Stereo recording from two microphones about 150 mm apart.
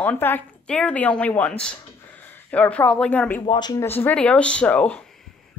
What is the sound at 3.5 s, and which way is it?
Speech, 30° left (ahead or behind).